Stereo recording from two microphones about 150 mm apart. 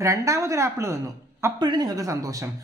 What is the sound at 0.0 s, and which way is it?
Speech, 20° right (ahead or behind).